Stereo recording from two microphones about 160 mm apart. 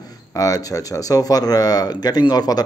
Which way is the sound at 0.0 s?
20° left (ahead or behind).